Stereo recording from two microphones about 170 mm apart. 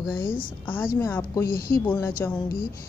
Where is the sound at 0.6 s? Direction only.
10° left (ahead or behind).